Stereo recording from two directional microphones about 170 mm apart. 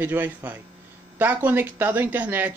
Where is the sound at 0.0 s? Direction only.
10° right (ahead or behind).